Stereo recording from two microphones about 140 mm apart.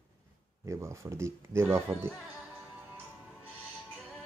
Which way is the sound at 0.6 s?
20° right (ahead or behind).